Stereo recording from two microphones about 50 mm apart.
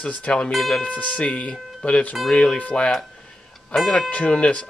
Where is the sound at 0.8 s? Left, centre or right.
Left.